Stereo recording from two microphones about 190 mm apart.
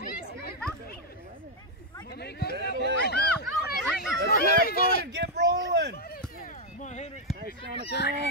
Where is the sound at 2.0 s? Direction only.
60° left (ahead or behind).